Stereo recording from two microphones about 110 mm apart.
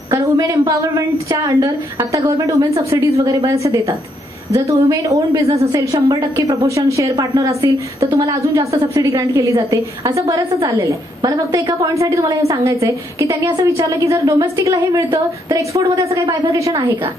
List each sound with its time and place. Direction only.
0.1 s a woman's voice: 30° right (ahead or behind)